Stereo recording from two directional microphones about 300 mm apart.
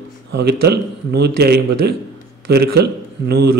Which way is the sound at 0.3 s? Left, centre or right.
Right.